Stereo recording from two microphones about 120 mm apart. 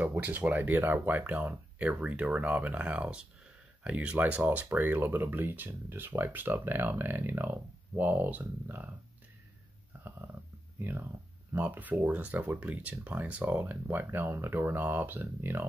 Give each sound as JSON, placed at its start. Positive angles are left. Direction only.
{"t": 0.0, "sound": "speech", "side_deg": -15}
{"t": 10.8, "sound": "speech", "side_deg": -15}